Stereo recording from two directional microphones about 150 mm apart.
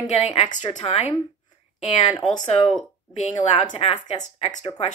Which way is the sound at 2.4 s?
50° left (ahead or behind).